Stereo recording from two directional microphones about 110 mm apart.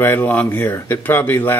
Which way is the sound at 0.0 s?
15° left (ahead or behind).